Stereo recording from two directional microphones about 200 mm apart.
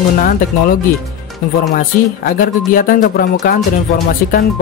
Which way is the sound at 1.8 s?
45° left (ahead or behind).